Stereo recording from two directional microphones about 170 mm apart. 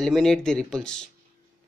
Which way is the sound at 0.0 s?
Centre (ahead or behind).